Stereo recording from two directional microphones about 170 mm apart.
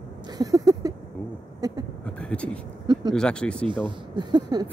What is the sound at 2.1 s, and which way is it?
Speech, 5° left (ahead or behind).